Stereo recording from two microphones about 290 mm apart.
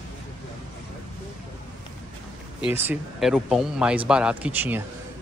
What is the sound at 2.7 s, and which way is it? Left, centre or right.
Speech, centre.